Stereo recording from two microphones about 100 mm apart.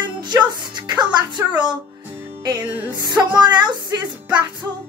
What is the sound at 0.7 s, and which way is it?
A woman's voice, 45° right (ahead or behind).